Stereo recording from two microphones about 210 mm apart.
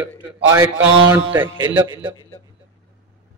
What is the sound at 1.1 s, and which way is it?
Speech, 10° right (ahead or behind).